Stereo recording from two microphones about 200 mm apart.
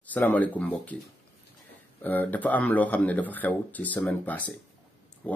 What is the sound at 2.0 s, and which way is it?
Speech, 10° left (ahead or behind).